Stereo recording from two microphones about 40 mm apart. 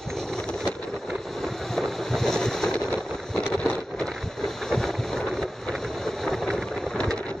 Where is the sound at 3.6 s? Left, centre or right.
Left.